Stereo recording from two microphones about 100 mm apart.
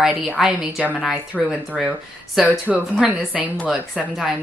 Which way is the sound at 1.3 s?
5° left (ahead or behind).